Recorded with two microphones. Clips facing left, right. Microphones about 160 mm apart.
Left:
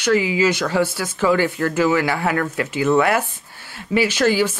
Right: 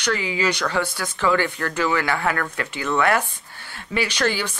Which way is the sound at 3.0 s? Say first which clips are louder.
Left 3 dB; 5° left (ahead or behind).